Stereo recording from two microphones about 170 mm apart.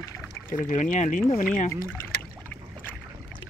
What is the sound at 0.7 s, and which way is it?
Speech, 45° left (ahead or behind).